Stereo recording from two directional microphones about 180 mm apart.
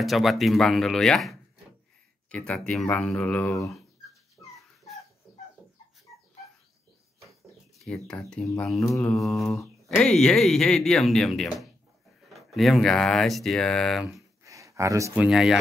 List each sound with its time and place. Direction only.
0.0 s speech: centre (ahead or behind); by 3.7 s 15° left (ahead or behind)
4.4 s dog: centre (ahead or behind)
7.8 s speech: 5° left (ahead or behind)
14.4 s a sound: 15° right (ahead or behind)
15.1 s speech: 5° right (ahead or behind)